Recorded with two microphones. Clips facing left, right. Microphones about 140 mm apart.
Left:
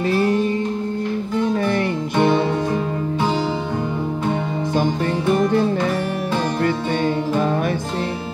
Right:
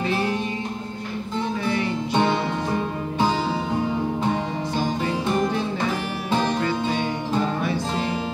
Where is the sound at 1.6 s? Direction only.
50° left (ahead or behind).